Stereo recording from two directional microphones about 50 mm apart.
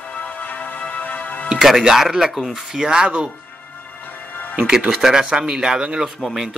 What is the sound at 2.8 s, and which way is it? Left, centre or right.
Speech, centre.